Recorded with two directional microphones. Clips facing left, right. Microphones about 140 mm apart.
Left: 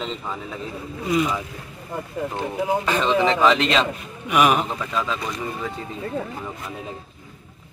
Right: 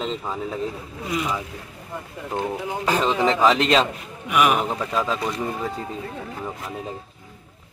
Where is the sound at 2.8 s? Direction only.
40° right (ahead or behind).